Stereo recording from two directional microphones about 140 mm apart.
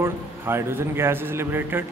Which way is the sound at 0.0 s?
15° right (ahead or behind).